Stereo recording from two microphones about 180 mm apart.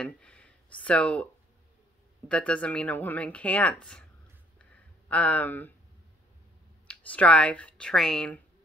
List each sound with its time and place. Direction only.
0.0 s speech: 5° left (ahead or behind)
2.2 s speech: 5° left (ahead or behind)
4.6 s a sound: 5° left (ahead or behind)
6.9 s speech: 5° left (ahead or behind)